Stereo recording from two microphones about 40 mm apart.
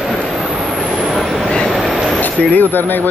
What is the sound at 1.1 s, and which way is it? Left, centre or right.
Train, centre.